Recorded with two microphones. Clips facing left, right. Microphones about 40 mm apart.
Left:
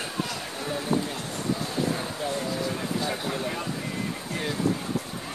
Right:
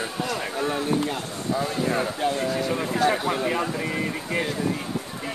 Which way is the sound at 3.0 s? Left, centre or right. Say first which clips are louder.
Right 7 dB; right.